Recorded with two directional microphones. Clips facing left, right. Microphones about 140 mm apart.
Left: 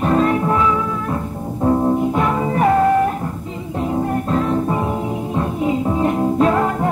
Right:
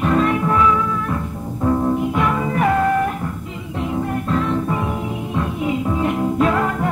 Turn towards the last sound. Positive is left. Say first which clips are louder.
# left 2 dB
turn(degrees=30)  # may be behind; listen again after turning